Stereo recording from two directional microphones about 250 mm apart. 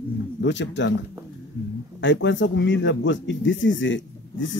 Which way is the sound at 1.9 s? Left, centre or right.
Left.